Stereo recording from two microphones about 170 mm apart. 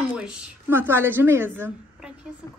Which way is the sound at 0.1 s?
5° right (ahead or behind).